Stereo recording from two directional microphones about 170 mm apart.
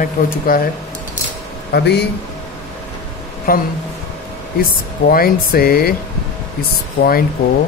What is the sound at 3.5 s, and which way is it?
Speech, 60° left (ahead or behind).